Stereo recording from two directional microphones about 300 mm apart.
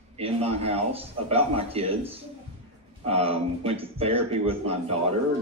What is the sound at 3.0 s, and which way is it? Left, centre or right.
A man's voice, centre.